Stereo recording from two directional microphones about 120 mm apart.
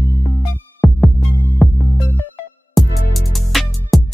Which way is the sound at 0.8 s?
Centre (ahead or behind).